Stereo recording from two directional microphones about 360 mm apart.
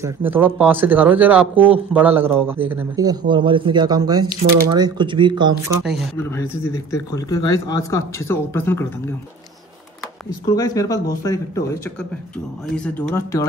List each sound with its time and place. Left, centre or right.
0.0 s speech: centre
5.9 s speech: centre
10.5 s speech: centre